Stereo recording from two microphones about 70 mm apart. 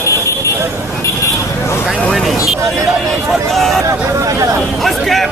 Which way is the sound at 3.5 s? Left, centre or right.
Centre.